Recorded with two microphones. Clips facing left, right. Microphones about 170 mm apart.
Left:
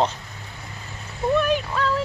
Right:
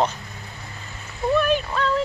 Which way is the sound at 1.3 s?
15° left (ahead or behind).